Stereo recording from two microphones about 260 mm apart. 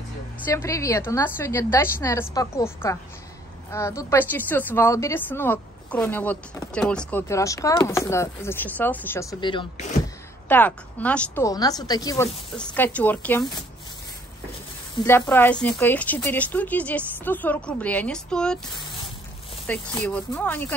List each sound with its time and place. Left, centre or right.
0.5 s speech: centre
10.5 s speech: centre
15.0 s speech: centre
19.7 s speech: centre